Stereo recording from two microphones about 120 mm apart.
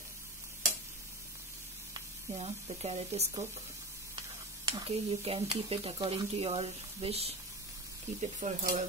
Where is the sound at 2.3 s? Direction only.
60° right (ahead or behind).